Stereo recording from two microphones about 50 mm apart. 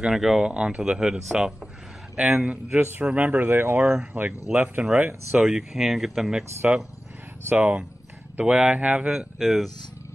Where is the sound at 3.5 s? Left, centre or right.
Right.